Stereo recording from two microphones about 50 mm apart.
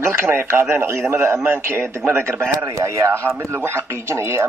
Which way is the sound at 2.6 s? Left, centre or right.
Right.